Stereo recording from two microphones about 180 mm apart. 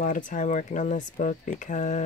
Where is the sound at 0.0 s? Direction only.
45° left (ahead or behind).